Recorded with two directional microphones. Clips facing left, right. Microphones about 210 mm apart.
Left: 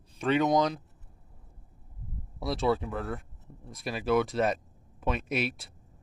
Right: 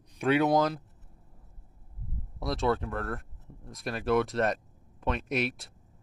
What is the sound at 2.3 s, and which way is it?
Speech, centre (ahead or behind).